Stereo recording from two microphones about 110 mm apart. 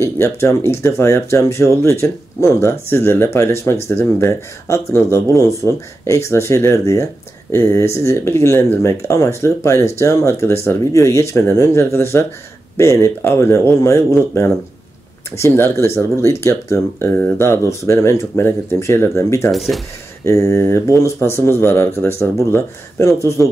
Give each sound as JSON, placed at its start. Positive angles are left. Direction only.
{"t": 0.0, "sound": "speech", "side_deg": 25}
{"t": 19.5, "sound": "speech", "side_deg": 0}
{"t": 20.2, "sound": "speech", "side_deg": 25}